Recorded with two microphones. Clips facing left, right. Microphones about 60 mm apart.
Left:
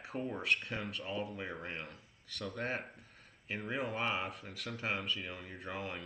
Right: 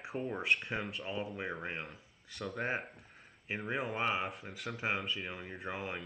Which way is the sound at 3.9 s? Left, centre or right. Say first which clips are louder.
Right 3 dB; centre.